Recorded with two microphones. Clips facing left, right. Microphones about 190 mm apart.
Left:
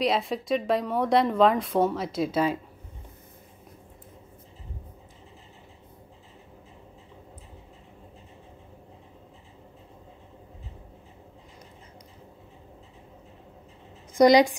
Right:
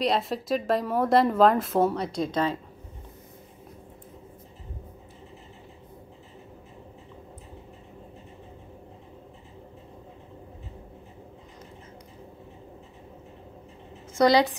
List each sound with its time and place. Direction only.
0.0 s a woman's voice: centre (ahead or behind)
14.1 s a woman's voice: 15° left (ahead or behind)